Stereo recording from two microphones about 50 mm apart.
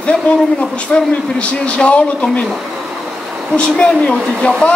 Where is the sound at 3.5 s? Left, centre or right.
Centre.